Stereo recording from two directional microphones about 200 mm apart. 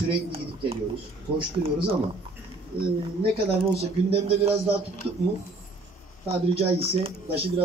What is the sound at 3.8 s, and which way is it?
Speech, 30° right (ahead or behind).